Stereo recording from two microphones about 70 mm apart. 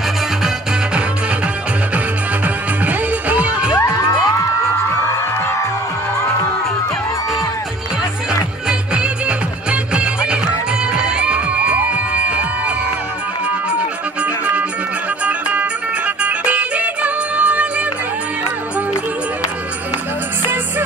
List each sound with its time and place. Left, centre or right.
2.4 s music: right
3.7 s music: left
8.3 s music: centre
10.9 s crowd: centre
14.2 s music: centre